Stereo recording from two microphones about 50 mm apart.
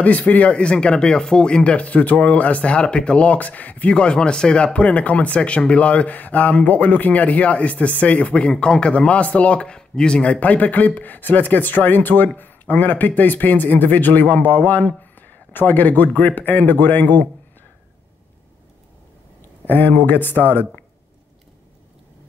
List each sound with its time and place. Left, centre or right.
0.0 s speech: left
10.4 s speech: left
19.6 s speech: left